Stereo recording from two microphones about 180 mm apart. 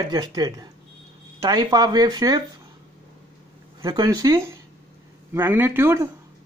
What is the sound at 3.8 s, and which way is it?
A man's voice, 20° right (ahead or behind).